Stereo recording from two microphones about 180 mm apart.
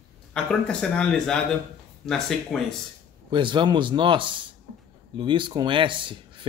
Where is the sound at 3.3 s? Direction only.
25° right (ahead or behind).